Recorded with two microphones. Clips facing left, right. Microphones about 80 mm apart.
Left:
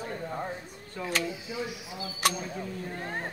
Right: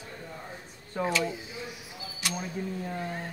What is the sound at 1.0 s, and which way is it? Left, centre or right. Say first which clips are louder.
Speech: right 6 dB; right.